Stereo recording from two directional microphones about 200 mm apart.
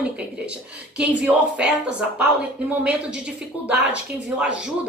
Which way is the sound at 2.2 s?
5° right (ahead or behind).